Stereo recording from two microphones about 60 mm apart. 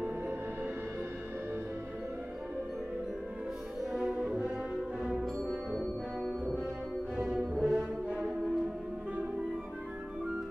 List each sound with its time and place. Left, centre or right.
4.1 s french horn: centre
5.8 s music: centre
7.2 s music: centre